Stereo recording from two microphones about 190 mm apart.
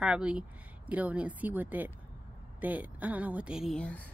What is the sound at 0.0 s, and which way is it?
A woman's voice, 5° right (ahead or behind).